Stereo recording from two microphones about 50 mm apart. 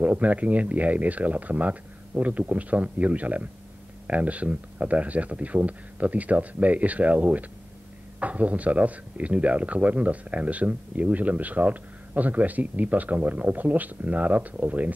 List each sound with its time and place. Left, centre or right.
0.0 s speech: right